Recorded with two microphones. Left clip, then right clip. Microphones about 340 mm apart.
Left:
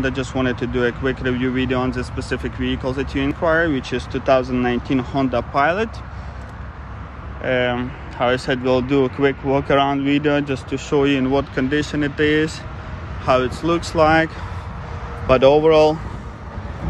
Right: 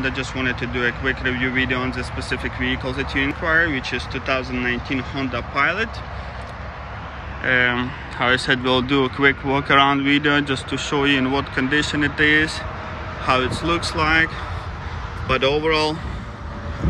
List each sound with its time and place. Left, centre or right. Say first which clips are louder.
0.0 s speech: left 2 dB; centre
1.9 s speech: left 1 dB; left
2.3 s speech: right 1 dB; centre
7.4 s speech: right 1 dB; centre